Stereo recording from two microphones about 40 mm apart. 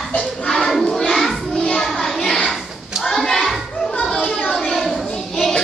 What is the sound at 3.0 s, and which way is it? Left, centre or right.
Children playing, centre.